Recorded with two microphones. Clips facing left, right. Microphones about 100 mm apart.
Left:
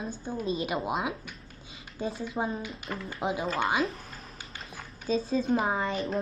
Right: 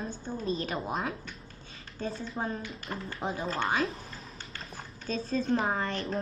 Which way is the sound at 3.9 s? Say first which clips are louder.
Even; 30° right (ahead or behind).